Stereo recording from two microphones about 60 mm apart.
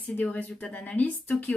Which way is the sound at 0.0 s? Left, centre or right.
Left.